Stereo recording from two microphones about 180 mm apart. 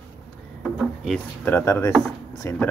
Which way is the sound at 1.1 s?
10° left (ahead or behind).